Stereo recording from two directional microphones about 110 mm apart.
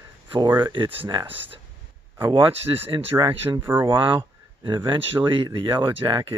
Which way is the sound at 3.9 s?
50° right (ahead or behind).